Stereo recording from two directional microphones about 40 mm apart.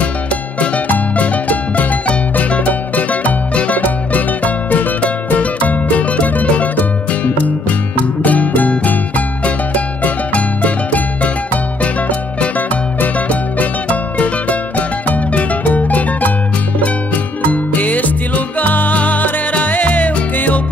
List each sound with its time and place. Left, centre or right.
0.6 s music: left